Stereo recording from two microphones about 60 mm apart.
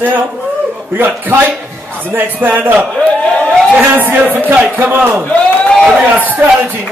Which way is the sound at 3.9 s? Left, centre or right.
Right.